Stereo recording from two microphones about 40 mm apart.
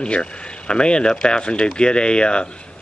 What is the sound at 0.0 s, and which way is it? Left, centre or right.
Speech, left.